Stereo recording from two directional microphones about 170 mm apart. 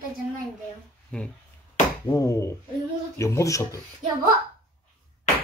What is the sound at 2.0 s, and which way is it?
Speech, 20° left (ahead or behind).